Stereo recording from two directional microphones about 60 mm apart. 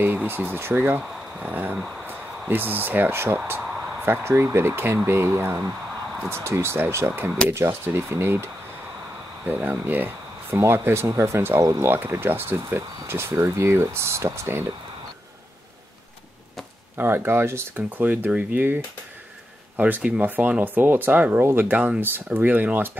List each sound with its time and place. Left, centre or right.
0.0 s speech: right
0.7 s speech: right
7.1 s speech: right
7.5 s speech: right
9.5 s speech: right
10.5 s speech: right
16.9 s speech: right
17.7 s speech: right
19.8 s speech: right
22.0 s speech: right